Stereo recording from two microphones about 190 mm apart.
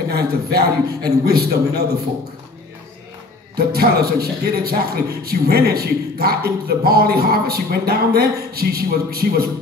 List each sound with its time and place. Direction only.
0.1 s a man's voice: 55° right (ahead or behind)
3.5 s speech: 55° right (ahead or behind)